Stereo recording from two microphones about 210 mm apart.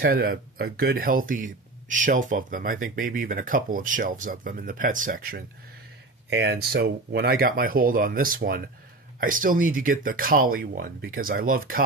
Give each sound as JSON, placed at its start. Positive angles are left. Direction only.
{"t": 0.0, "sound": "speech", "side_deg": -45}